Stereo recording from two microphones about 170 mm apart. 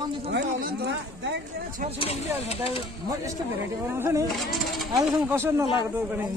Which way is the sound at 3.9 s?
15° right (ahead or behind).